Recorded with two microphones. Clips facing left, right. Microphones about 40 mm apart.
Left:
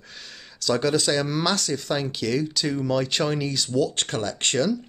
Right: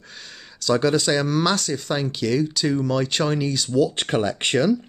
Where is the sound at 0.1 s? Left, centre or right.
Centre.